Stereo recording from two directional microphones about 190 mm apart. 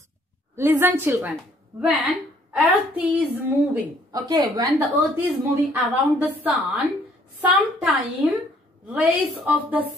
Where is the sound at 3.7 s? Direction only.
20° right (ahead or behind).